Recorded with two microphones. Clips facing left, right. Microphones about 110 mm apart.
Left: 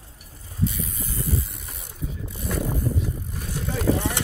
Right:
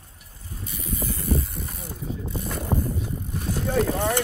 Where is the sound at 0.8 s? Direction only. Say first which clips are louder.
Right 4 dB; 50° right (ahead or behind).